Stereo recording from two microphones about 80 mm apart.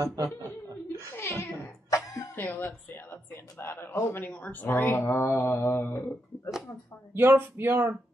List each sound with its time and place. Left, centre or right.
0.0 s chuckle: right
1.1 s a sound: left
2.0 s cough: left
2.3 s speech: left
7.2 s speech: right